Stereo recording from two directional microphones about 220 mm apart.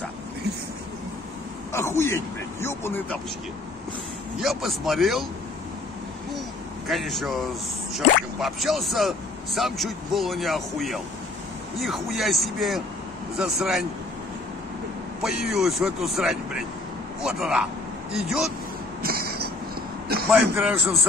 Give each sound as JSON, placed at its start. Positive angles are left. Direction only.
{"t": 1.7, "sound": "speech", "side_deg": 10}
{"t": 4.4, "sound": "speech", "side_deg": 0}
{"t": 6.9, "sound": "speech", "side_deg": 0}
{"t": 8.4, "sound": "speech", "side_deg": 0}
{"t": 15.2, "sound": "speech", "side_deg": 0}
{"t": 19.0, "sound": "a sound", "side_deg": -45}
{"t": 20.2, "sound": "a man's voice", "side_deg": -5}